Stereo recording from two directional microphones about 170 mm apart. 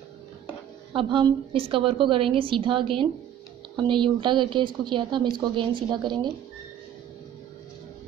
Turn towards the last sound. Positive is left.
turn(degrees=-25)  # may be behind; listen again after turning